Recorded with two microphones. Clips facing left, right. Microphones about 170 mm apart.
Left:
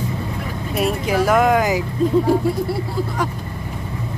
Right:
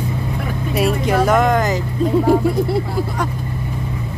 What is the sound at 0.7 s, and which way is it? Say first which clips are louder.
Speech: right 2 dB; centre (ahead or behind).